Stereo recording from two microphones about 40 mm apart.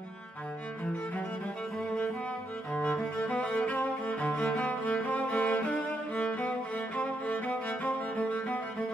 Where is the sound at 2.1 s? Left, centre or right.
Left.